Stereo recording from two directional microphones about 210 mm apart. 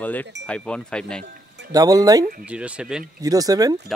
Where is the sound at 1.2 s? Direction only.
55° right (ahead or behind).